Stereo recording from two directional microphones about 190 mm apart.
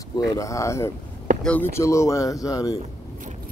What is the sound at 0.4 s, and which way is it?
Speech, 15° left (ahead or behind).